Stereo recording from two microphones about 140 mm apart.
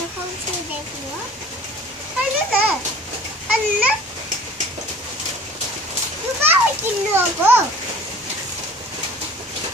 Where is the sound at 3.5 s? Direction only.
10° right (ahead or behind).